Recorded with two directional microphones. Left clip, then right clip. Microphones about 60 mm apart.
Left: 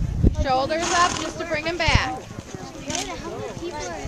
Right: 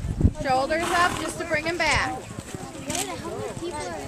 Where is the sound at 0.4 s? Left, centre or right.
Centre.